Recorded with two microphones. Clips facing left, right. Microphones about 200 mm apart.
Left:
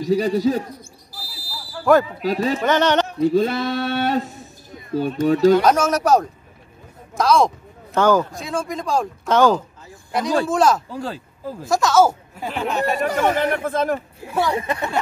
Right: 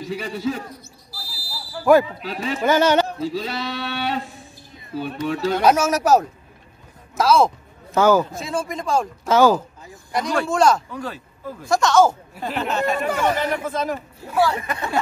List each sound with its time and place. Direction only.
0.0 s speech: 40° left (ahead or behind)
1.9 s speech: 10° right (ahead or behind)
2.2 s speech: 40° left (ahead or behind)
2.6 s speech: 5° right (ahead or behind)
3.2 s a sound: 55° left (ahead or behind)
5.6 s speech: 10° right (ahead or behind)
10.9 s speech: 30° left (ahead or behind)
11.6 s speech: centre (ahead or behind)
12.9 s speech: 35° left (ahead or behind)
13.4 s a sound: 55° left (ahead or behind)
14.3 s speech: 20° left (ahead or behind)